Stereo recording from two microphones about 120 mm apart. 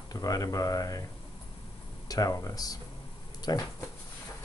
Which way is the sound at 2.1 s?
30° left (ahead or behind).